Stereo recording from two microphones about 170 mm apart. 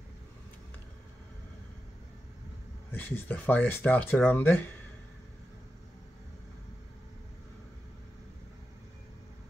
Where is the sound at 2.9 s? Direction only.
10° left (ahead or behind).